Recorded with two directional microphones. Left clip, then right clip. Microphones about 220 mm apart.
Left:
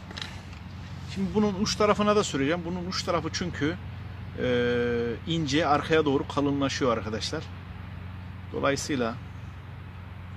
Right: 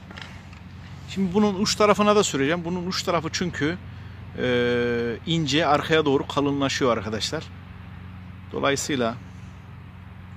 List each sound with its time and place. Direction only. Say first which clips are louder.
1.1 s speech: right 4 dB; 50° right (ahead or behind)
8.5 s speech: right 3 dB; 50° right (ahead or behind)